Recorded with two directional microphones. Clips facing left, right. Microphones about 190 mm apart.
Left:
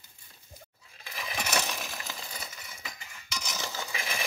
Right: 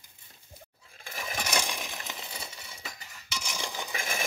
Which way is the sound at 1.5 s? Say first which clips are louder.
Left 1 dB; 10° right (ahead or behind).